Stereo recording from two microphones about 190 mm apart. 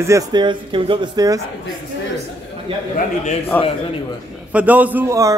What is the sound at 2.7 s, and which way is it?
Speech, 25° right (ahead or behind).